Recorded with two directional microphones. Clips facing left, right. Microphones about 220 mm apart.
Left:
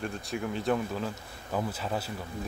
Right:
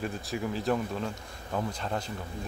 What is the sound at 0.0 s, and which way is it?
Speech, centre (ahead or behind).